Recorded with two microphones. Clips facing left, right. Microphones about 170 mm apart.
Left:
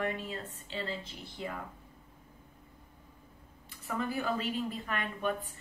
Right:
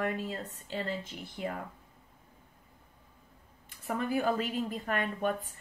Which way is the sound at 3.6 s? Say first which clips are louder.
Right 2 dB; 50° right (ahead or behind).